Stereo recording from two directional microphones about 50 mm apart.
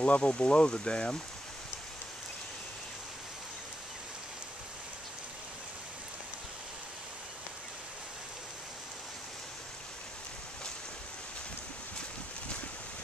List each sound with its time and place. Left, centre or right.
0.0 s speech: left